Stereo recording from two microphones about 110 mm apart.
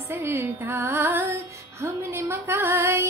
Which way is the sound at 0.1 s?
25° right (ahead or behind).